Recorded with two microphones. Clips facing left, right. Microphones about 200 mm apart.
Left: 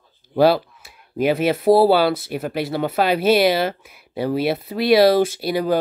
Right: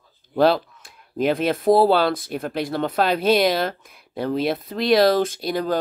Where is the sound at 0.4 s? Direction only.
5° left (ahead or behind).